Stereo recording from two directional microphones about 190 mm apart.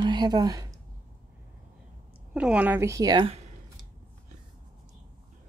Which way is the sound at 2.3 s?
5° right (ahead or behind).